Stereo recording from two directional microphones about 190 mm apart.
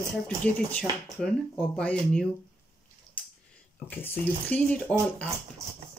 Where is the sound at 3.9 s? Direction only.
10° left (ahead or behind).